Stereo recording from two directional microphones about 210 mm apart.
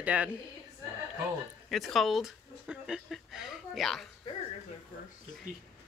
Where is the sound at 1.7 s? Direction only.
Centre (ahead or behind).